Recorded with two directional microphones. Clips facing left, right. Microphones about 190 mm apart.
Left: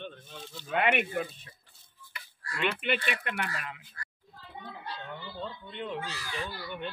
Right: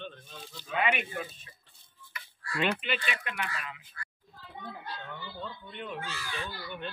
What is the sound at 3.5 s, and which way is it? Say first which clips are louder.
Speech: left 1 dB; 45° left (ahead or behind).